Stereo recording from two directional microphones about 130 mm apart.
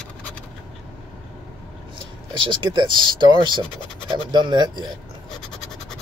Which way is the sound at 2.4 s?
40° right (ahead or behind).